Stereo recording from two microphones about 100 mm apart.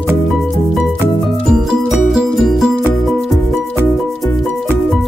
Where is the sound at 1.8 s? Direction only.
5° right (ahead or behind).